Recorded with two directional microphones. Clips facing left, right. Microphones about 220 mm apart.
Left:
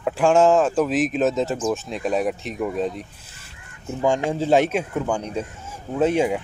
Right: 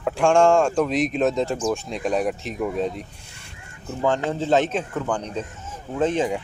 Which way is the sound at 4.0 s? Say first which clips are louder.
Left 1 dB; 10° left (ahead or behind).